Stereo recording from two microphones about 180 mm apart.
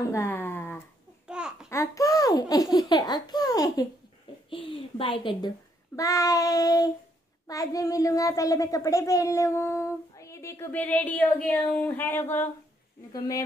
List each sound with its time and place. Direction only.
0.1 s speech: 10° left (ahead or behind)
1.2 s babbling: 5° right (ahead or behind)
1.7 s laughter: 15° left (ahead or behind)
4.5 s a woman's voice: 30° left (ahead or behind)
5.9 s child singing: 20° left (ahead or behind)
7.4 s speech: 20° left (ahead or behind)